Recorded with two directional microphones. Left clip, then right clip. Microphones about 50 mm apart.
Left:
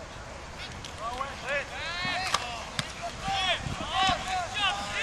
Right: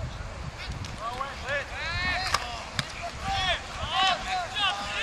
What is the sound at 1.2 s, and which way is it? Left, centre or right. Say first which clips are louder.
Vehicle: even; centre.